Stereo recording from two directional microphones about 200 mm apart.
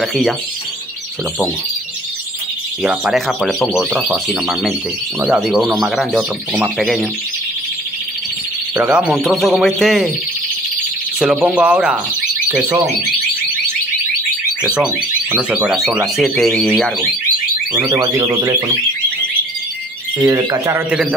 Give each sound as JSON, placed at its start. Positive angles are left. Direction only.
{"t": 0.0, "sound": "speech", "side_deg": 0}
{"t": 2.8, "sound": "speech", "side_deg": -5}
{"t": 8.7, "sound": "speech", "side_deg": -5}
{"t": 11.1, "sound": "speech", "side_deg": -5}
{"t": 14.6, "sound": "speech", "side_deg": -5}
{"t": 17.9, "sound": "speech", "side_deg": -20}
{"t": 20.2, "sound": "a man's voice", "side_deg": -15}